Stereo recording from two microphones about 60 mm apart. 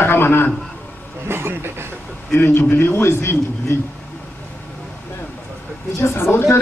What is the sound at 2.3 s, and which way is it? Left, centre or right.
Speech, left.